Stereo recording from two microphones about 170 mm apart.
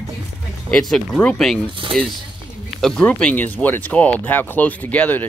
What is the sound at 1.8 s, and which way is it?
Speech, 30° right (ahead or behind).